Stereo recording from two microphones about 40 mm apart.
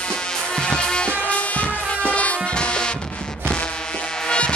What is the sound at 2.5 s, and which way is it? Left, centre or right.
Music, left.